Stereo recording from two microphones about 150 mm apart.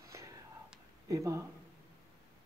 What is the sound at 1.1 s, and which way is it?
Speech, 20° right (ahead or behind).